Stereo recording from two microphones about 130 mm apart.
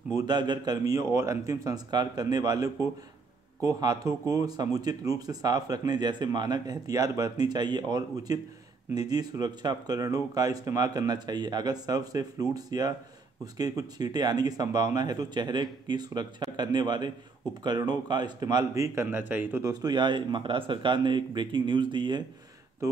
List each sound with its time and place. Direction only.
0.2 s a man's voice: 35° right (ahead or behind); by 19.6 s 15° right (ahead or behind)
19.6 s speech: 30° right (ahead or behind)